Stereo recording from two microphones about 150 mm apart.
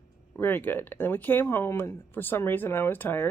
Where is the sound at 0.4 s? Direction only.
15° left (ahead or behind).